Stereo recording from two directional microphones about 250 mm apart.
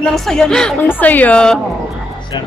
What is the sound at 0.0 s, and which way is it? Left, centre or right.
Speech, centre.